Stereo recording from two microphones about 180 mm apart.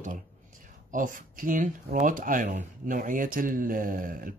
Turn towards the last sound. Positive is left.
turn(degrees=-50)  # may be behind; listen again after turning